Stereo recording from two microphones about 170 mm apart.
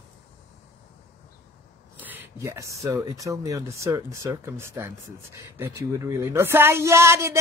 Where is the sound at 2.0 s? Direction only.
15° right (ahead or behind).